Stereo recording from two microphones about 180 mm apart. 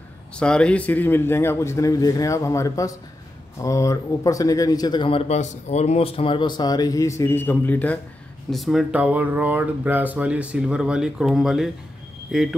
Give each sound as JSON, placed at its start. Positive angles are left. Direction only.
{"t": 0.4, "sound": "speech", "side_deg": 5}